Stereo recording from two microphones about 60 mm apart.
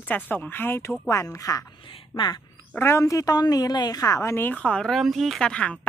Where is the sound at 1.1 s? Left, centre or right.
Left.